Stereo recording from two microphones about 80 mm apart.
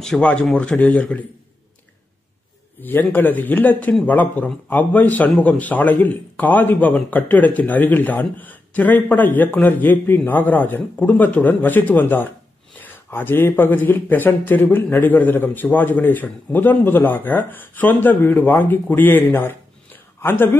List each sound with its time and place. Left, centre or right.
0.2 s a man's voice: centre
2.8 s a man's voice: left